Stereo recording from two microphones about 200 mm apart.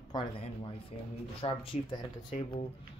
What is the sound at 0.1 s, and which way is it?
Speech, 25° left (ahead or behind).